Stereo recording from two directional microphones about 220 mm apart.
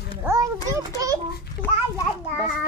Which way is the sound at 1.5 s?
15° left (ahead or behind).